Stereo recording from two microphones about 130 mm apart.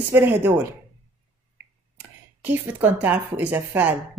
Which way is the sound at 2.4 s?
15° right (ahead or behind).